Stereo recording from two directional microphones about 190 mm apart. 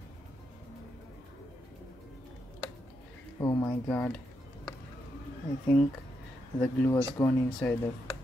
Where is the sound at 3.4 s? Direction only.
20° left (ahead or behind).